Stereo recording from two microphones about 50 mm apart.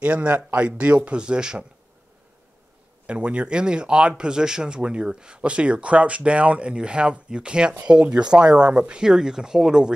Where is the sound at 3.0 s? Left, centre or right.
Right.